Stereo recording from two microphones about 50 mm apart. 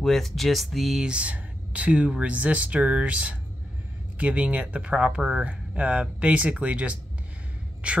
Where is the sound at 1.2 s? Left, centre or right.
Right.